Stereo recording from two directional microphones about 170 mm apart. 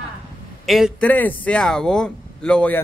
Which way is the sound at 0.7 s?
Centre (ahead or behind).